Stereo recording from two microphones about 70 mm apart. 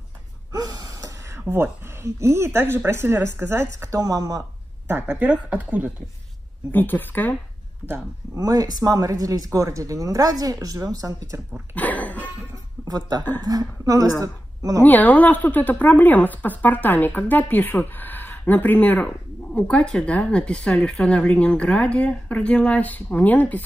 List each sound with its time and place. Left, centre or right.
0.5 s gasp: right
1.3 s speech: right
4.8 s a woman's voice: right
6.7 s speech: left
8.4 s speech: right
11.7 s speech: left
12.8 s a woman's voice: right
14.8 s a woman's voice: left